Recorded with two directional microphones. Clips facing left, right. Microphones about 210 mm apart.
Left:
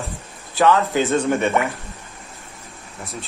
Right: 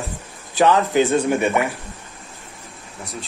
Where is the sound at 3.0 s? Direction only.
Centre (ahead or behind).